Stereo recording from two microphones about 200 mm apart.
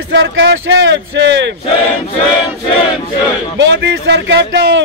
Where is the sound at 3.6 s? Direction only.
60° right (ahead or behind).